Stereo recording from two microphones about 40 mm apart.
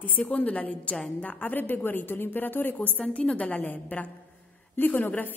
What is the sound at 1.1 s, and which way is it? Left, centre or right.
A woman's voice, left.